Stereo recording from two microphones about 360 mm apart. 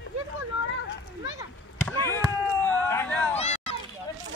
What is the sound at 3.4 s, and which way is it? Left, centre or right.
Run, centre.